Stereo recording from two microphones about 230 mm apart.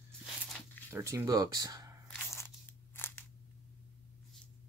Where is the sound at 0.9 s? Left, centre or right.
Centre.